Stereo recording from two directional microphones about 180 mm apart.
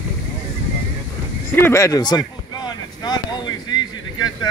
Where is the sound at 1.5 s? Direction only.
15° left (ahead or behind).